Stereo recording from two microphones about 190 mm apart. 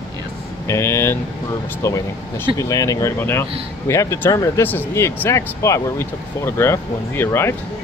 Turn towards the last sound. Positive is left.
turn(degrees=15)  # may be behind; listen again after turning